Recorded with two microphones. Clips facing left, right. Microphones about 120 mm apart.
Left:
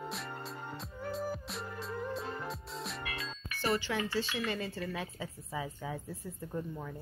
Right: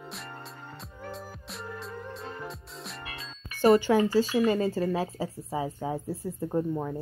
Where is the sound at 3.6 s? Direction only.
45° right (ahead or behind).